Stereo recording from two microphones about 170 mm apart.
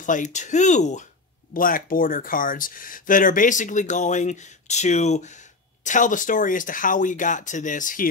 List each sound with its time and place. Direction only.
0.0 s speech: 50° left (ahead or behind)
1.5 s speech: 55° left (ahead or behind)